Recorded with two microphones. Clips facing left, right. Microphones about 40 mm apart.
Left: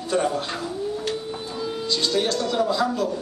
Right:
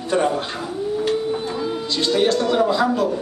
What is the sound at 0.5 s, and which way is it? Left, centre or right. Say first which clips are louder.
Cat: right 4 dB; centre.